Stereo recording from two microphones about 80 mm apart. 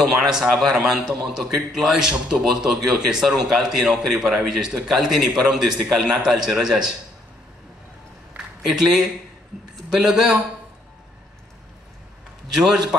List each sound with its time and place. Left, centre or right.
0.0 s a man's voice: centre
8.6 s a man's voice: centre
12.5 s a man's voice: centre